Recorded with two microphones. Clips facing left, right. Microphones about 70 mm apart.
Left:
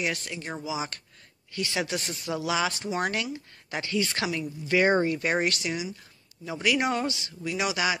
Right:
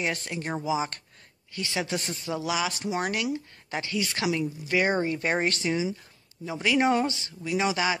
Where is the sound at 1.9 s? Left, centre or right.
Centre.